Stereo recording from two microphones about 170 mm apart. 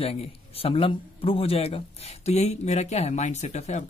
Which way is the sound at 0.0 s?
35° left (ahead or behind).